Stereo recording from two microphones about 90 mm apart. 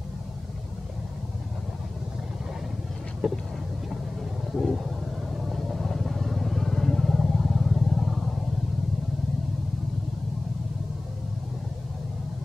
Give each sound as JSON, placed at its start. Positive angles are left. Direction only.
{"t": 3.2, "sound": "vehicle", "side_deg": -5}
{"t": 4.5, "sound": "vehicle", "side_deg": 0}